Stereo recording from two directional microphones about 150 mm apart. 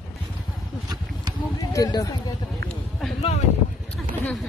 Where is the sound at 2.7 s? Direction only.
Centre (ahead or behind).